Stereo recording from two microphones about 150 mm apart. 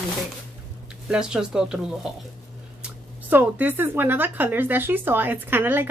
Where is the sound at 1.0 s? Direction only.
5° right (ahead or behind).